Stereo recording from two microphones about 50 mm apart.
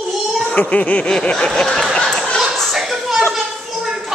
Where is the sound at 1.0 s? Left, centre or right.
Centre.